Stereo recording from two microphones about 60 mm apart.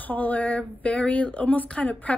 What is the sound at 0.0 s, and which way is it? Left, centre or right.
A woman's voice, left.